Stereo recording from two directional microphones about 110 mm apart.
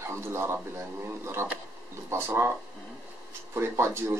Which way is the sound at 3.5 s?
25° right (ahead or behind).